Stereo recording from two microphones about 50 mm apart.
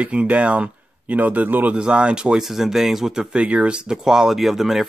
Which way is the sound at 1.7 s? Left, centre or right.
Centre.